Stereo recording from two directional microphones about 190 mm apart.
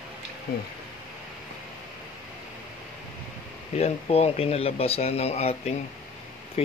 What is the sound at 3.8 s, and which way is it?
Speech, 30° left (ahead or behind).